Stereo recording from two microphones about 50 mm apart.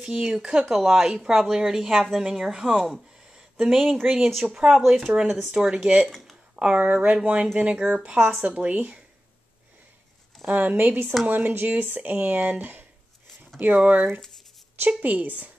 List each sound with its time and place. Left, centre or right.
0.3 s speech: centre
6.0 s speech: centre
6.5 s speech: right
10.4 s speech: right